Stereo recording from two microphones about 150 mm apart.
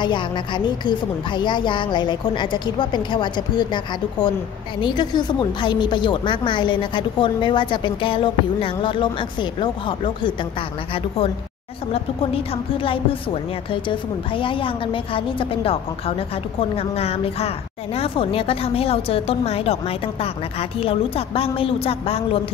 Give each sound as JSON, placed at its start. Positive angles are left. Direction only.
{"t": 0.0, "sound": "a woman's voice", "side_deg": 30}
{"t": 12.7, "sound": "a woman's voice", "side_deg": 35}